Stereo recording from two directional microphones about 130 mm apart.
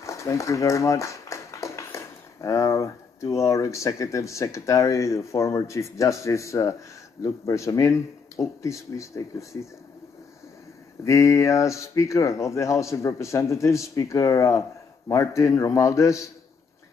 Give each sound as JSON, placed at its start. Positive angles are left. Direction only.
{"t": 0.0, "sound": "speech", "side_deg": 25}
{"t": 11.1, "sound": "a man's voice", "side_deg": 25}